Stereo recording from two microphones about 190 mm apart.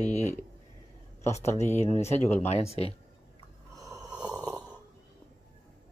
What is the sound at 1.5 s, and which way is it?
Speech, 35° left (ahead or behind).